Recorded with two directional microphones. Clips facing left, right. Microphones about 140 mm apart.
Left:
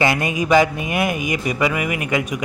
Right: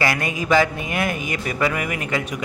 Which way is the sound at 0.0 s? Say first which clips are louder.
Left 4 dB; 20° left (ahead or behind).